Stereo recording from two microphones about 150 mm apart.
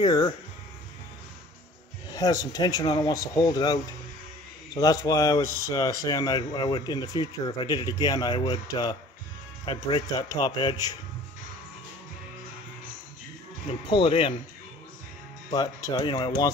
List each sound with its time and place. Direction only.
0.0 s speech: 25° left (ahead or behind)
2.1 s speech: 25° left (ahead or behind)
13.7 s speech: 35° left (ahead or behind)
15.5 s speech: 30° left (ahead or behind)